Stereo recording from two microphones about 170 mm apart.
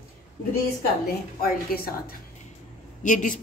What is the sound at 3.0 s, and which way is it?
Speech, 50° left (ahead or behind).